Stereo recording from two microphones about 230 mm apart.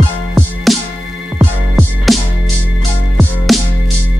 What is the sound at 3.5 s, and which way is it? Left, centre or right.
Music, centre.